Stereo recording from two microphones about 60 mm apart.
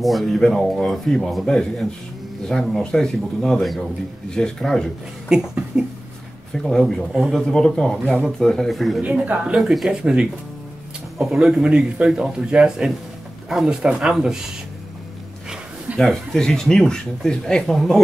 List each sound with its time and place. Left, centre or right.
0.0 s a man's voice: centre
5.3 s speech: centre
6.5 s speech: centre
9.0 s speech: right
9.6 s speech: centre
16.0 s a man's voice: centre